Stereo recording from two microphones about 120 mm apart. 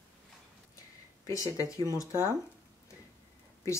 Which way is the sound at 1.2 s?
30° left (ahead or behind).